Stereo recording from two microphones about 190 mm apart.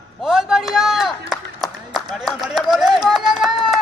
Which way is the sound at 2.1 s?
Centre (ahead or behind).